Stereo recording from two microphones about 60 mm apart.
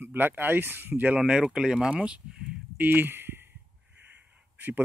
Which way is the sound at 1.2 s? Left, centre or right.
Centre.